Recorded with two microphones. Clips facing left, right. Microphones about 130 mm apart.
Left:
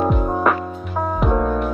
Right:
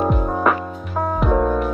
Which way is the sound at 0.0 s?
Centre (ahead or behind).